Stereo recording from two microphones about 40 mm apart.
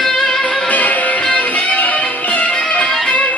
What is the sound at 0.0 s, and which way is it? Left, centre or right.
Music, centre.